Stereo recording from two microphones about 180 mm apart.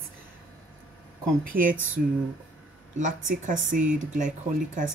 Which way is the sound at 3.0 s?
45° right (ahead or behind).